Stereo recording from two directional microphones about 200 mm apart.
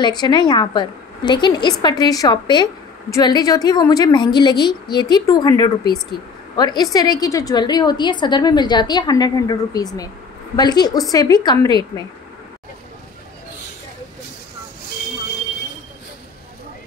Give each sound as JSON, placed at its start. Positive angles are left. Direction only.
{"t": 0.0, "sound": "a woman's voice", "side_deg": 20}